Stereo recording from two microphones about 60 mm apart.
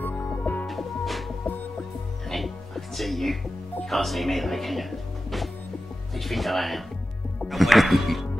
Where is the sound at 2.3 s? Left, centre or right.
Centre.